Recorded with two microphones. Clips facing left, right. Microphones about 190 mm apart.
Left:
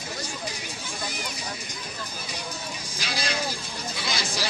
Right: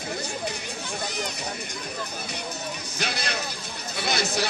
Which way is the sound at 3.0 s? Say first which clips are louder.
Even; 60° right (ahead or behind).